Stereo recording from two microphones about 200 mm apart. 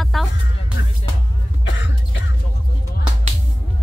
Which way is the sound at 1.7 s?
65° left (ahead or behind).